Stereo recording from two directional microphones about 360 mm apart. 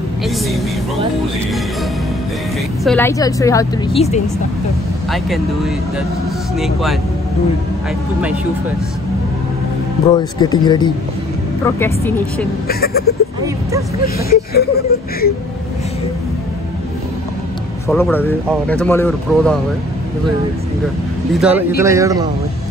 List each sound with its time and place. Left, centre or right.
2.8 s a woman's voice: centre
5.1 s speech: centre
10.0 s a woman's voice: centre
12.6 s speech: left
17.8 s speech: centre
21.4 s speech: centre